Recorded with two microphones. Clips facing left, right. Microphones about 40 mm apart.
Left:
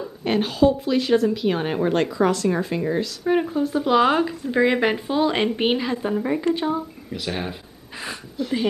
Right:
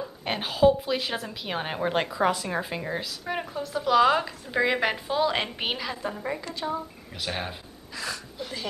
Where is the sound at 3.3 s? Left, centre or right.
Centre.